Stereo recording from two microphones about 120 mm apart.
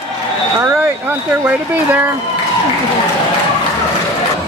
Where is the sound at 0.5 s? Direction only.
20° right (ahead or behind).